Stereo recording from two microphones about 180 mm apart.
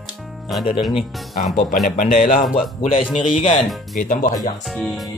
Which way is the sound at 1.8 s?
50° left (ahead or behind).